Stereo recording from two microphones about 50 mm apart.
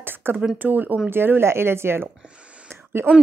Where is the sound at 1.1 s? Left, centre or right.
Right.